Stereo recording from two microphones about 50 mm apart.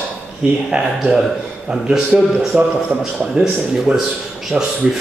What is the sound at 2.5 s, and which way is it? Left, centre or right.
A man's voice, centre.